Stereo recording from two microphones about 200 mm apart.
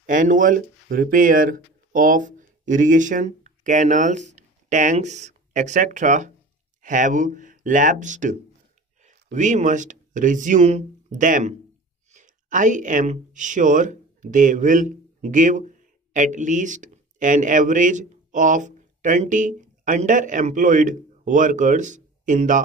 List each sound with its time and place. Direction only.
0.0 s speech: 40° right (ahead or behind)